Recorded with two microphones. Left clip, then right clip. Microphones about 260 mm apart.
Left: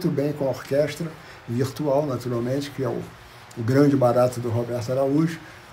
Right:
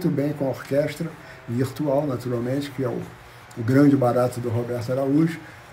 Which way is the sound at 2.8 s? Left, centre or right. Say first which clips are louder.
Even; centre.